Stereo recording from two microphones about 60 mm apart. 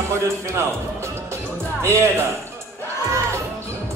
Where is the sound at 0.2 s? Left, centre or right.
Right.